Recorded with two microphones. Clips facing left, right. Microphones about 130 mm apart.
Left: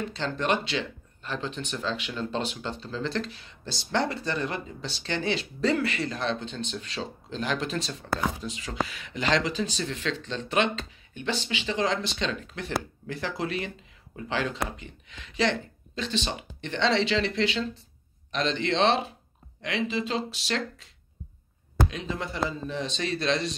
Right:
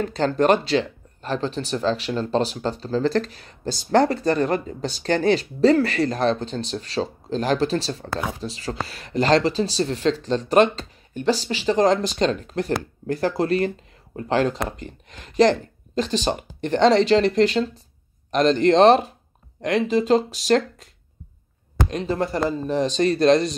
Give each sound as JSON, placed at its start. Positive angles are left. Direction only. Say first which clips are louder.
{"t": 0.0, "sound": "speech", "louder": "right 10 dB", "side_deg": -45}